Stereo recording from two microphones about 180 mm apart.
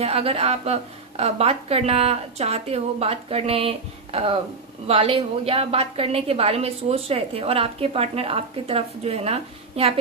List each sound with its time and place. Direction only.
0.0 s a woman's voice: 35° right (ahead or behind)